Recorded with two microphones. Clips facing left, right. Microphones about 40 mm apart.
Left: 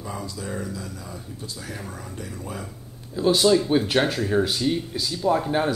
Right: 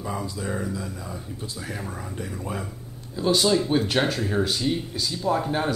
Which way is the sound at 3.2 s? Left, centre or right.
Centre.